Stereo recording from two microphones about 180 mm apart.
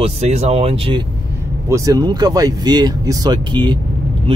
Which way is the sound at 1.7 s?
20° right (ahead or behind).